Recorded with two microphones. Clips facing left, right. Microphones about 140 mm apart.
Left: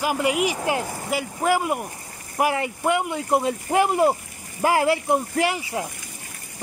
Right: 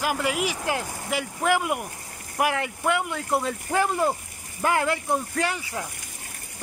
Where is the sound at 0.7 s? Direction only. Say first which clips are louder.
Left 3 dB; 5° left (ahead or behind).